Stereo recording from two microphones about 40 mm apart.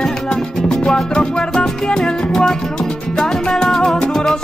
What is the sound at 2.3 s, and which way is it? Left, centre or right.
Music, centre.